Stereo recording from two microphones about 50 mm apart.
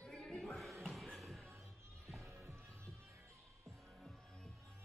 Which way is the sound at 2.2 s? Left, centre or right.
Right.